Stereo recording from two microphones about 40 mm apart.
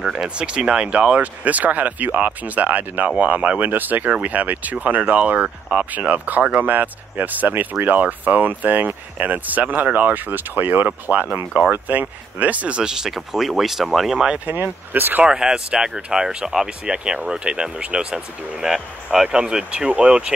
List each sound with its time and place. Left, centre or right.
0.4 s speech: right
1.1 s speech: right
10.9 s speech: right
12.8 s speech: centre
14.1 s speech: centre
14.4 s speech: right
15.2 s speech: centre